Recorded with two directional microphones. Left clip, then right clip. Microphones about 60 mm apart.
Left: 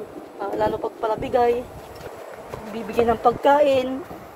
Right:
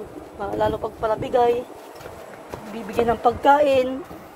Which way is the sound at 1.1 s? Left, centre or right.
Left.